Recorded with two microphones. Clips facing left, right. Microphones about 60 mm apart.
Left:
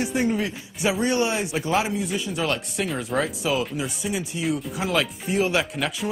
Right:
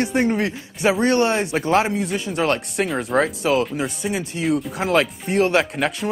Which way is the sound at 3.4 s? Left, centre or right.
Right.